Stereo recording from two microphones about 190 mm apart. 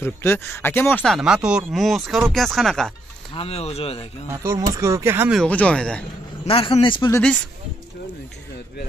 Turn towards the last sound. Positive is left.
turn(degrees=5)  # may be behind; listen again after turning